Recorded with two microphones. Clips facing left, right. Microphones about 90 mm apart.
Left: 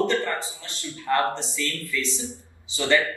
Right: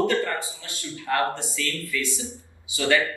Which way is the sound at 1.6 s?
20° right (ahead or behind).